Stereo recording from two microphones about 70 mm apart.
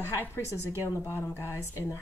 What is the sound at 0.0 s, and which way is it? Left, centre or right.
A woman's voice, left.